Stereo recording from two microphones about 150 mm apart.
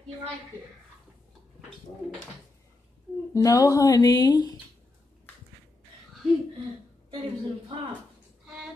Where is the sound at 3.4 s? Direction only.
20° left (ahead or behind).